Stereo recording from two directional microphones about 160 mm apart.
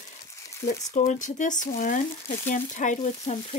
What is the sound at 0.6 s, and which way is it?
Speech, 45° left (ahead or behind).